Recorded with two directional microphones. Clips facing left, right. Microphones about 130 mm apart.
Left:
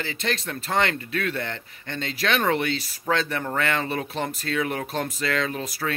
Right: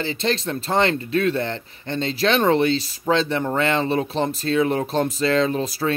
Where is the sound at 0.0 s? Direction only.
30° right (ahead or behind).